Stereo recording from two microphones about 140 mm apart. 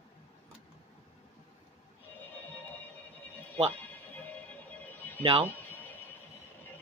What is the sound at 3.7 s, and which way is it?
Music, 15° left (ahead or behind).